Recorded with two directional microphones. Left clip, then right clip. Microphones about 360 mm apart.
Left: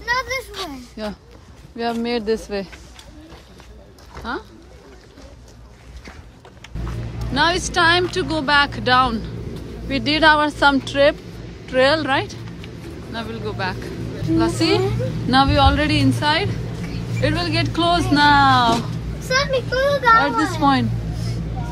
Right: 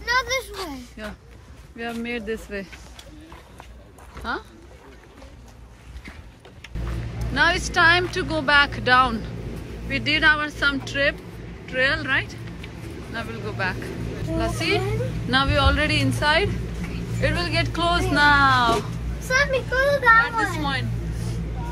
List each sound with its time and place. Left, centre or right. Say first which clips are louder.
0.1 s a sound: left 1 dB; centre
1.0 s speech: left 6 dB; centre
4.2 s speech: left 1 dB; centre
7.3 s speech: left 2 dB; centre
19.2 s speech: left 2 dB; right
20.2 s speech: left 3 dB; centre